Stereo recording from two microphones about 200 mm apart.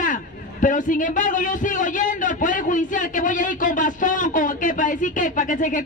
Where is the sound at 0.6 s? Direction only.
40° left (ahead or behind).